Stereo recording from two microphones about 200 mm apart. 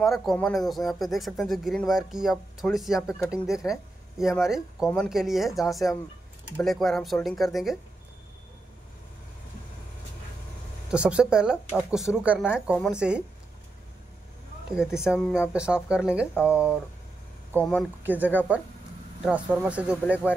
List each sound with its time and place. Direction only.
0.0 s speech: centre (ahead or behind)
10.9 s speech: 5° right (ahead or behind)
14.8 s speech: 5° right (ahead or behind)
18.0 s speech: 10° right (ahead or behind)